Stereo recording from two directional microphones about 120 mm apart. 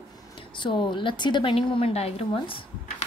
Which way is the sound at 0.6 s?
40° left (ahead or behind).